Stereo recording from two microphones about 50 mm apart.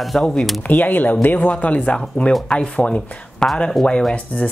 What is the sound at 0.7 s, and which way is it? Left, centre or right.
Speech, left.